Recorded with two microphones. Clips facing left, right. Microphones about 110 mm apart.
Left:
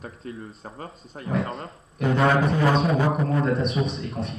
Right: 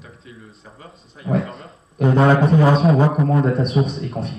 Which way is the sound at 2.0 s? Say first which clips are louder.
Right 5 dB; 30° right (ahead or behind).